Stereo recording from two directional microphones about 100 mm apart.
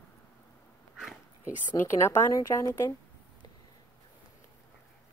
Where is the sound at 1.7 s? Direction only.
25° left (ahead or behind).